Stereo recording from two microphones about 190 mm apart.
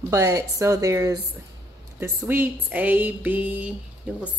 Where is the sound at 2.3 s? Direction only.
10° right (ahead or behind).